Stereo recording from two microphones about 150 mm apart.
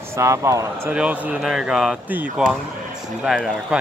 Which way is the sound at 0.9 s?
10° right (ahead or behind).